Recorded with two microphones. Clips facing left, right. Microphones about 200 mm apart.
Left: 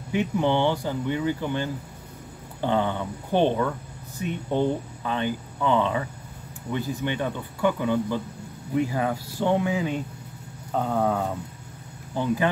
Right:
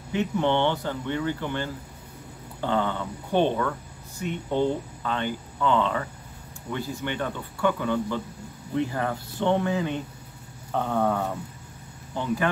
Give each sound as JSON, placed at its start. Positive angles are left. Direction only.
{"t": 0.1, "sound": "speech", "side_deg": 10}